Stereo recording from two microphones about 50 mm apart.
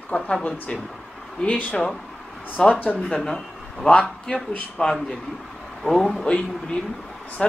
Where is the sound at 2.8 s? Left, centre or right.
Left.